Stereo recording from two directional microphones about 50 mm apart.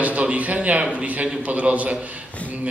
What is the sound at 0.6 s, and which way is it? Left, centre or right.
A man's voice, right.